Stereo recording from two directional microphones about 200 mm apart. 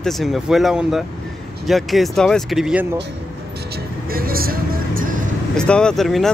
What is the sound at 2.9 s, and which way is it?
Vehicle, 55° right (ahead or behind).